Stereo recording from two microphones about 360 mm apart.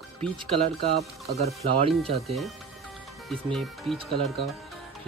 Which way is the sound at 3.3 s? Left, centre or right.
Centre.